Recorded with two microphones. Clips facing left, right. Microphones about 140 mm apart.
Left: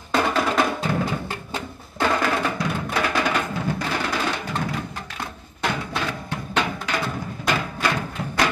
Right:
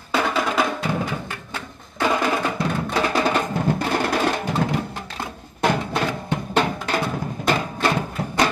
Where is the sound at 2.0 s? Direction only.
15° right (ahead or behind).